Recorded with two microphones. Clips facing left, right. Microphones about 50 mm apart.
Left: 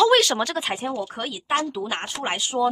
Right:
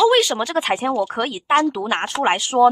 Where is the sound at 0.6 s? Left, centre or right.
Right.